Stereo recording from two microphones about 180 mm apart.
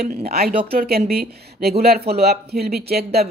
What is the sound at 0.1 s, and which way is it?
Speech, 60° right (ahead or behind).